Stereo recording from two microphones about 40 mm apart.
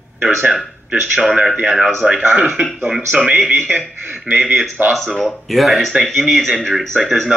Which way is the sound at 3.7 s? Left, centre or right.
Right.